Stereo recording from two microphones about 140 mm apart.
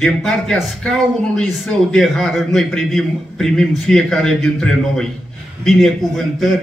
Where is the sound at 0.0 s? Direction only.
5° left (ahead or behind).